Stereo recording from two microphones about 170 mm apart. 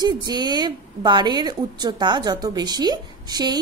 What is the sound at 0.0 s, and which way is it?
A woman's voice, 25° right (ahead or behind).